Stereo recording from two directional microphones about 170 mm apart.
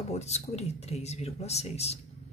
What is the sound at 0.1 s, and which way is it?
Speech, 40° left (ahead or behind).